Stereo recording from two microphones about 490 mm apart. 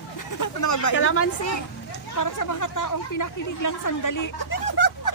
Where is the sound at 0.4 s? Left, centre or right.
Left.